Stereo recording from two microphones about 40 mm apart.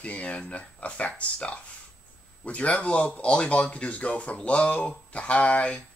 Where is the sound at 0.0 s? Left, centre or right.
Left.